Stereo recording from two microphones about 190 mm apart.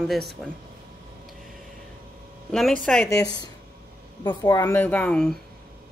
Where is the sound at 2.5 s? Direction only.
5° left (ahead or behind).